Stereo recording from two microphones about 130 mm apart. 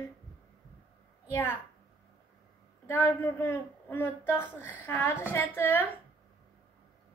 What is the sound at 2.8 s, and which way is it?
A woman's voice, 20° left (ahead or behind).